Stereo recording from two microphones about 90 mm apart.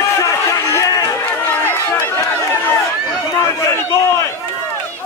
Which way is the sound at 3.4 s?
30° left (ahead or behind).